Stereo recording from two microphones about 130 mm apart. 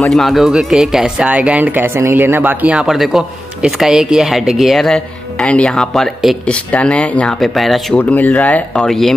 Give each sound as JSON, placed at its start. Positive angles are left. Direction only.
{"t": 0.0, "sound": "speech", "side_deg": 0}
{"t": 7.9, "sound": "speech", "side_deg": 10}